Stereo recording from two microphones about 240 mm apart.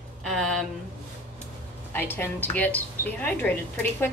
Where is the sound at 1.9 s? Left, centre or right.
Centre.